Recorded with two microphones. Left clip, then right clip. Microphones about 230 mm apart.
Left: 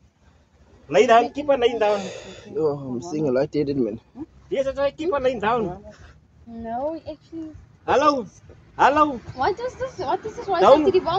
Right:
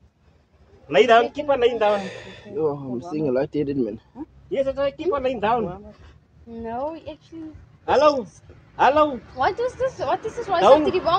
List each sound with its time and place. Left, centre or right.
0.8 s a man's voice: left
2.0 s speech: centre
4.5 s speech: left
6.5 s speech: right
7.8 s a man's voice: left
9.4 s speech: right